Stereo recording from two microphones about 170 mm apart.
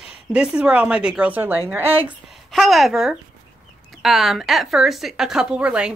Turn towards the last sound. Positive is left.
turn(degrees=-5)  # may be behind; listen again after turning